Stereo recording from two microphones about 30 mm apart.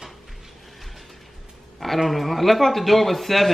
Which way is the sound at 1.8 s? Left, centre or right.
Centre.